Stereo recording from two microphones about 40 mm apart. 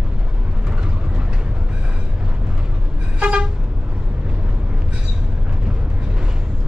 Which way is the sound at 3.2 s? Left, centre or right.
Right.